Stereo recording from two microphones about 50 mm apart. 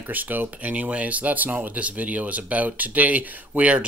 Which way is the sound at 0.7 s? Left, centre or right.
Right.